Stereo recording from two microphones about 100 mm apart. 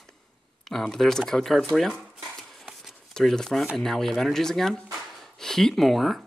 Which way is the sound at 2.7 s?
5° left (ahead or behind).